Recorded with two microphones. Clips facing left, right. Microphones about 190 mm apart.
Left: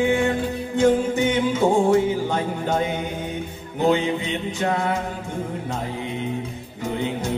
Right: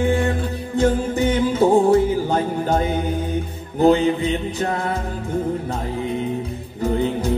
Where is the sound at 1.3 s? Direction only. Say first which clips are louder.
Right 5 dB; 35° right (ahead or behind).